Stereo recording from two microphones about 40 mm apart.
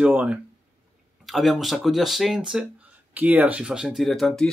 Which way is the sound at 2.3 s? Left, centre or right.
Centre.